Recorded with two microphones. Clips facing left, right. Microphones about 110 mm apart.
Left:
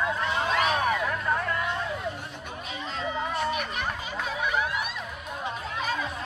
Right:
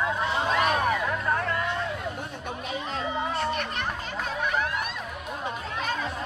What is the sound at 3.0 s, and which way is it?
Children playing, 15° right (ahead or behind).